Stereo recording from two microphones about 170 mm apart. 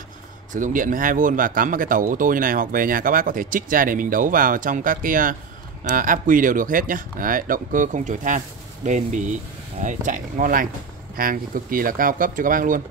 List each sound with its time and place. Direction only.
0.5 s speech: 50° right (ahead or behind)